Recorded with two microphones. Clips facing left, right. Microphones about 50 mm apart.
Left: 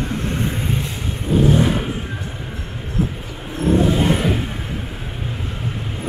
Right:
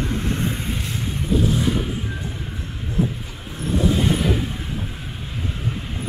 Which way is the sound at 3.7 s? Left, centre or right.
Left.